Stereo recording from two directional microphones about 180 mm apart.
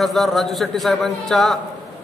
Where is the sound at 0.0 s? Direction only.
Centre (ahead or behind).